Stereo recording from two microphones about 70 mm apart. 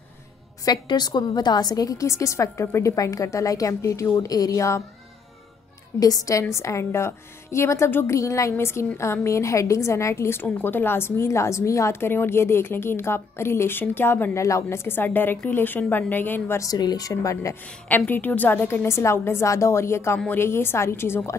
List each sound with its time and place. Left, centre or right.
0.7 s a woman's voice: left
5.9 s speech: left
6.5 s a woman's voice: left
8.1 s a woman's voice: left
14.3 s a woman's voice: left
16.5 s speech: left
17.1 s a woman's voice: left
17.8 s a woman's voice: left